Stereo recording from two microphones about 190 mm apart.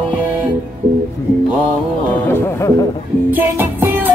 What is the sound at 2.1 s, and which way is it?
Speech, 10° left (ahead or behind).